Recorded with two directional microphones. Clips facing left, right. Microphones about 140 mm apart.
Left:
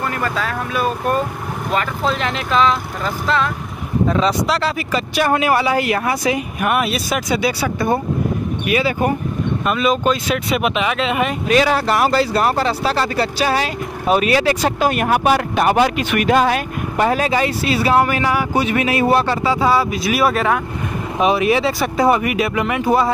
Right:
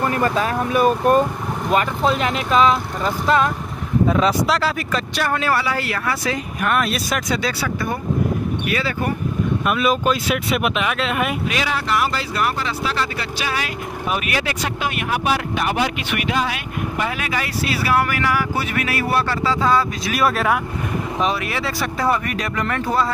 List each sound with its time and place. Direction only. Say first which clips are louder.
0.0 s speech: right 3 dB; 20° right (ahead or behind)
1.7 s speech: right 2 dB; 5° right (ahead or behind)
5.2 s speech: left 5 dB; 15° left (ahead or behind)
9.7 s speech: left 2 dB; 5° right (ahead or behind)
11.4 s speech: left 8 dB; 40° left (ahead or behind); by 20.6 s centre (ahead or behind)
21.2 s speech: left 9 dB; 20° left (ahead or behind)